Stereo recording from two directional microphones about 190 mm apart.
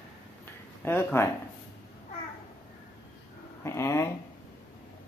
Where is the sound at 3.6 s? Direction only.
15° left (ahead or behind).